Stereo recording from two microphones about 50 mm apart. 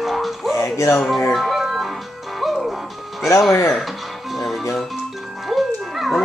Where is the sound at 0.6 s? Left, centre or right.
Left.